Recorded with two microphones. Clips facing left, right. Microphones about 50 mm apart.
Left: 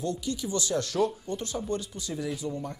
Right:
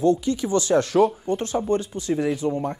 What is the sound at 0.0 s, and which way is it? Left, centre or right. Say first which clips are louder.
Speech: right 11 dB; right.